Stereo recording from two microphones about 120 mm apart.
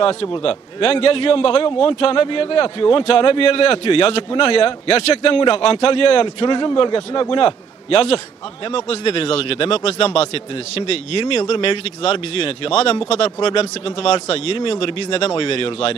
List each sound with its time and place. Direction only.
0.0 s a man's voice: 50° left (ahead or behind)